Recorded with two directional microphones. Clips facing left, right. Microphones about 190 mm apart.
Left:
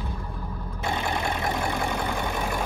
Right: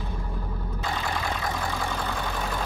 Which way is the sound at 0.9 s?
20° left (ahead or behind).